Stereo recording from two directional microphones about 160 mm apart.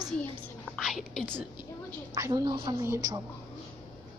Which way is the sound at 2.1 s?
20° right (ahead or behind).